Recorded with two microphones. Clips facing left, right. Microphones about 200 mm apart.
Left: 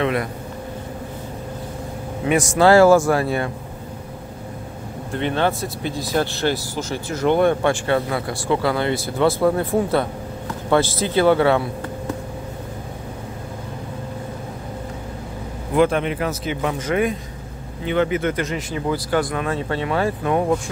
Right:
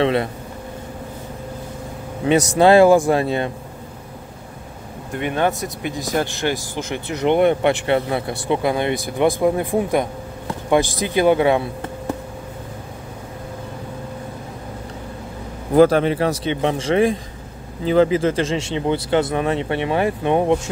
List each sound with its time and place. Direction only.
0.0 s speech: 30° right (ahead or behind)
2.2 s speech: 20° right (ahead or behind)
5.2 s speech: 15° right (ahead or behind)
15.7 s speech: 35° right (ahead or behind)